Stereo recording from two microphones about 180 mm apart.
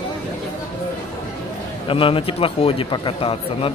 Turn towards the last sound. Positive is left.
turn(degrees=30)  # may be behind; listen again after turning